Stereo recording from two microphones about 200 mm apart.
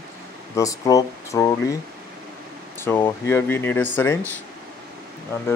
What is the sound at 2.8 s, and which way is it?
Speech, 10° left (ahead or behind).